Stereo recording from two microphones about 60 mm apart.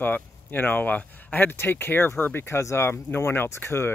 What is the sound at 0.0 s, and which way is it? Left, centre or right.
Speech, left.